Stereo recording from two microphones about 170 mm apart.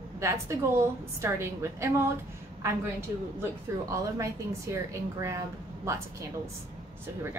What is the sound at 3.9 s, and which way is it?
A woman's voice, 20° right (ahead or behind).